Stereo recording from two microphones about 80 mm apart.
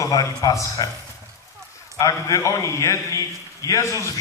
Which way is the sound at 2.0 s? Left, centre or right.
Left.